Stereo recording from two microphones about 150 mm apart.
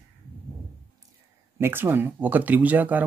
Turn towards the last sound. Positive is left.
turn(degrees=-10)  # may be behind; listen again after turning